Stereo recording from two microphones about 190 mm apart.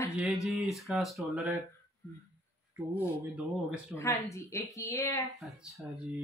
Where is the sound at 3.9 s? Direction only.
15° left (ahead or behind).